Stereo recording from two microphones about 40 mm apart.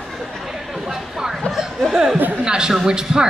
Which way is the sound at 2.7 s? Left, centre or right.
Centre.